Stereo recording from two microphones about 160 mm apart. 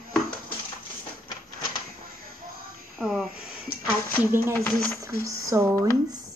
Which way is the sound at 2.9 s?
5° right (ahead or behind).